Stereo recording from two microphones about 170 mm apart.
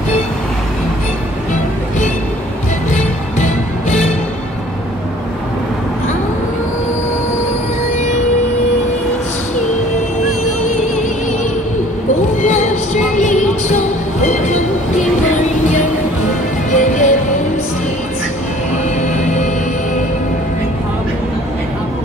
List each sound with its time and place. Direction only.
12.4 s music: 45° left (ahead or behind)
16.7 s music: 45° left (ahead or behind)
18.9 s music: 45° left (ahead or behind)